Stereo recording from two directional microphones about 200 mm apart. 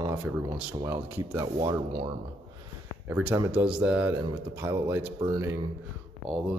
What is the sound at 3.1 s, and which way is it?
Speech, 10° right (ahead or behind).